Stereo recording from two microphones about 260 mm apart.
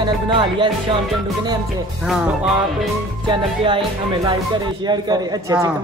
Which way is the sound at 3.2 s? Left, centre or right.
Centre.